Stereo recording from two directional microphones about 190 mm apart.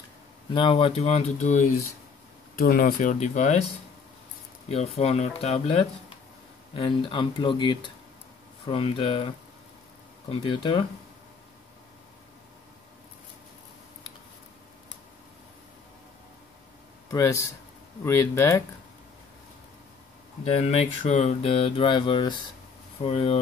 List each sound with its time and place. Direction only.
0.5 s speech: 25° left (ahead or behind)
2.5 s speech: 50° left (ahead or behind)
4.6 s speech: 35° left (ahead or behind)
10.3 s speech: 25° left (ahead or behind)
17.1 s speech: 15° left (ahead or behind)
20.4 s speech: 35° left (ahead or behind)